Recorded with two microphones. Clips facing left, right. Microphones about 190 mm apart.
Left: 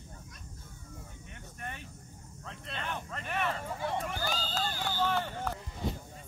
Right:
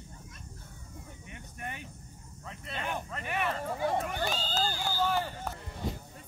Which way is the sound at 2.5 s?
10° right (ahead or behind).